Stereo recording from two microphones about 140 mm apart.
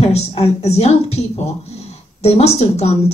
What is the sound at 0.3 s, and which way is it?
Speech, 45° left (ahead or behind).